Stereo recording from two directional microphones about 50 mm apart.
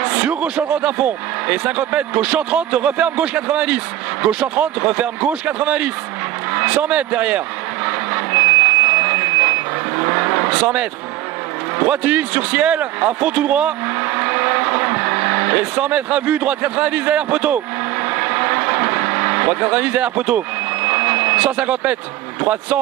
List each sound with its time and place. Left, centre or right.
0.0 s a man's voice: right
6.5 s vehicle: right
10.6 s a man's voice: right
18.0 s vehicle: right
22.4 s a man's voice: right